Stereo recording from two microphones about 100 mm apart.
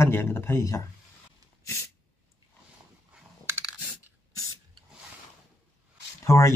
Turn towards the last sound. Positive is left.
turn(degrees=30)  # may be behind; listen again after turning